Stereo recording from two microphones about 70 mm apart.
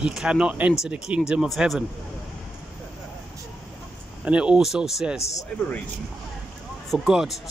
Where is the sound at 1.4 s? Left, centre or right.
Centre.